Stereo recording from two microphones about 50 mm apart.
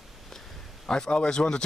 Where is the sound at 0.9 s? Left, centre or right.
Centre.